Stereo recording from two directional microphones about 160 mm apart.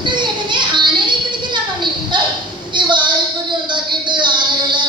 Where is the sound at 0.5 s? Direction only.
30° right (ahead or behind).